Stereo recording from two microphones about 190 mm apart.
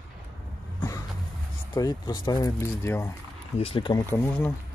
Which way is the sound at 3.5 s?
30° left (ahead or behind).